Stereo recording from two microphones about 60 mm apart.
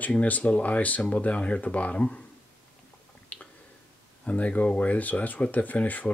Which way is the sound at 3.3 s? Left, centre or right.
Left.